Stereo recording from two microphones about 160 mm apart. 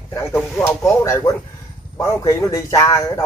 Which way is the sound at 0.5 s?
20° left (ahead or behind).